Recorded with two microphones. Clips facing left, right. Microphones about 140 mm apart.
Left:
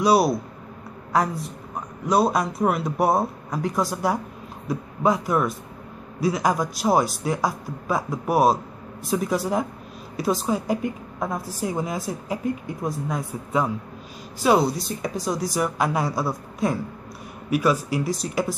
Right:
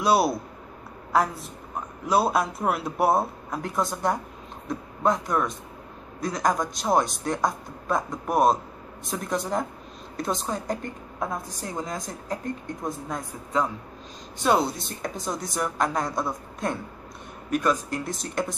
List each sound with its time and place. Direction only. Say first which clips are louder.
0.0 s a woman's voice: left 3 dB; centre (ahead or behind)